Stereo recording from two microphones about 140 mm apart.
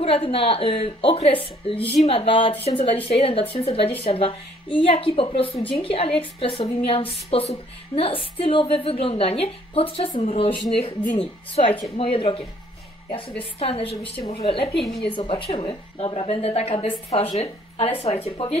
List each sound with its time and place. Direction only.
0.0 s a woman's voice: 40° left (ahead or behind)